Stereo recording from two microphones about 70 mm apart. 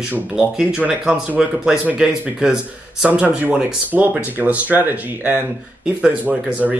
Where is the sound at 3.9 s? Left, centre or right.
Right.